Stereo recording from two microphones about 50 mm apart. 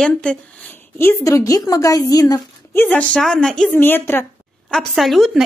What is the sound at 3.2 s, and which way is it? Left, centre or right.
Speech, centre.